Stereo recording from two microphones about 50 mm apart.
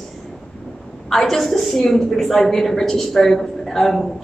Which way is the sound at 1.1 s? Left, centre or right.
Centre.